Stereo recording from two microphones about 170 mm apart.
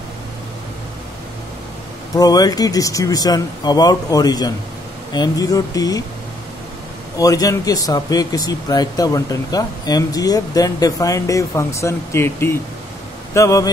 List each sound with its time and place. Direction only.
2.1 s speech: 20° left (ahead or behind)
7.2 s speech: 20° left (ahead or behind)